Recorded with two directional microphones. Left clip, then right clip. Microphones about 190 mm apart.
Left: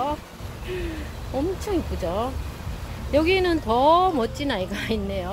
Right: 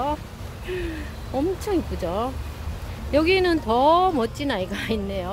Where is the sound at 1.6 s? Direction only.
20° right (ahead or behind).